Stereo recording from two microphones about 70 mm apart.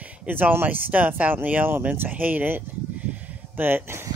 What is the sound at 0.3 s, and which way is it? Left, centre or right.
Speech, right.